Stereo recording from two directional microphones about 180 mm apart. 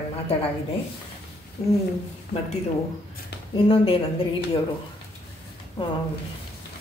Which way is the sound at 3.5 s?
30° left (ahead or behind).